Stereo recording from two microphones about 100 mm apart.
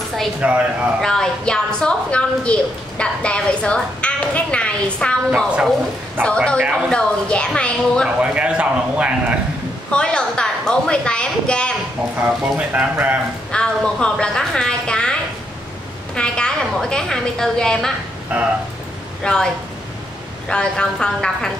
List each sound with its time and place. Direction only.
0.4 s speech: 15° right (ahead or behind)
1.0 s a woman's voice: 5° left (ahead or behind)
6.2 s a man's voice: 10° left (ahead or behind)
8.2 s a man's voice: 10° right (ahead or behind)
9.8 s a sound: 10° left (ahead or behind)
12.2 s speech: 15° right (ahead or behind)
13.5 s a sound: 10° left (ahead or behind)
16.2 s a woman's voice: 10° left (ahead or behind)
18.3 s speech: 15° right (ahead or behind)
19.2 s a woman's voice: 10° left (ahead or behind)